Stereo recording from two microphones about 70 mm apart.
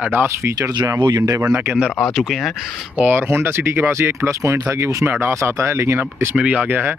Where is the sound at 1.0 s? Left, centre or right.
Right.